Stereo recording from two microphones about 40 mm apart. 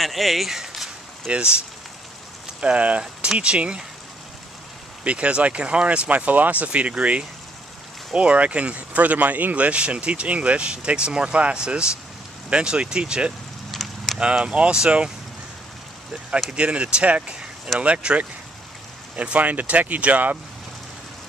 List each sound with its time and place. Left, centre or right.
0.0 s speech: centre
1.3 s speech: right
2.6 s speech: right
5.0 s speech: right
9.7 s speech: right
13.7 s a sound: centre
14.4 s speech: right
16.4 s speech: right